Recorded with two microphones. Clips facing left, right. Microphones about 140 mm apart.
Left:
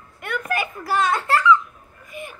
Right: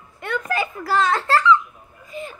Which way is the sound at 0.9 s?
20° left (ahead or behind).